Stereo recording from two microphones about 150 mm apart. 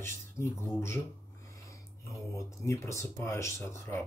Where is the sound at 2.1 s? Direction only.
20° left (ahead or behind).